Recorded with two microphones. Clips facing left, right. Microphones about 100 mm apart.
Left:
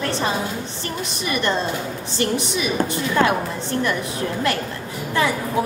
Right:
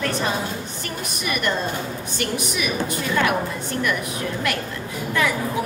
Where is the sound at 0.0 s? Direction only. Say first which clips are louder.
Left 1 dB; 30° left (ahead or behind).